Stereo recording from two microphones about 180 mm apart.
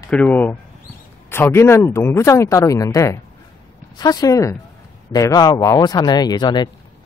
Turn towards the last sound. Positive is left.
turn(degrees=25)  # may be behind; listen again after turning